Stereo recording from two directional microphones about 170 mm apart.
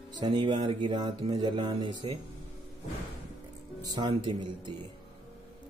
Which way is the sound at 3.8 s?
25° right (ahead or behind).